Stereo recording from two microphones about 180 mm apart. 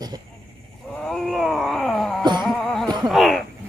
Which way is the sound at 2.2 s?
25° right (ahead or behind).